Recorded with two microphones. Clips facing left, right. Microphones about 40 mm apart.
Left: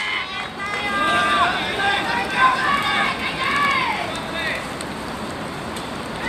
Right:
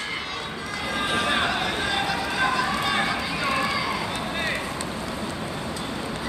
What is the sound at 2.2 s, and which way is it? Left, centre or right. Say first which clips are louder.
Run: left 6 dB; left.